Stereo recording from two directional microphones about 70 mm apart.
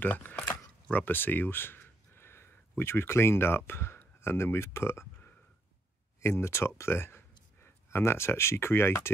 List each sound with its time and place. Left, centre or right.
0.0 s camera: left
2.8 s speech: left